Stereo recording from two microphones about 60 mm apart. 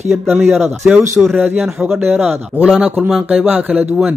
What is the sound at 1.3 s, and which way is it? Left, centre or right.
A man's voice, right.